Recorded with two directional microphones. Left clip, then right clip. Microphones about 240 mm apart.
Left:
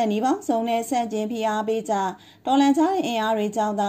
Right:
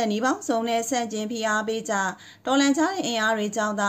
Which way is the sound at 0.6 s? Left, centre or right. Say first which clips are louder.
Left 1 dB; right.